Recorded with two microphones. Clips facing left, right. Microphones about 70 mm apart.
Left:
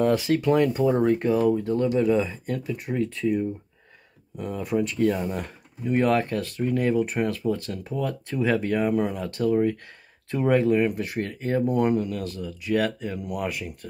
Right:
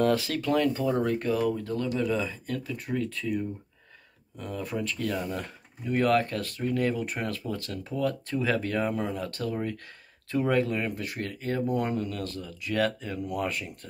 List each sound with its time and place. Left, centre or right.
0.0 s speech: centre